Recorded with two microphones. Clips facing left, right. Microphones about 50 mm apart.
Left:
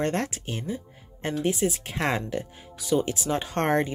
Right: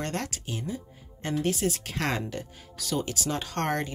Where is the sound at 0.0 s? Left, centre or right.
Left.